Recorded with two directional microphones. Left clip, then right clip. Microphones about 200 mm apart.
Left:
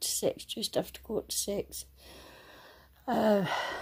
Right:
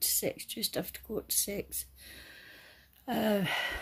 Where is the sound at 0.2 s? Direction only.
10° right (ahead or behind).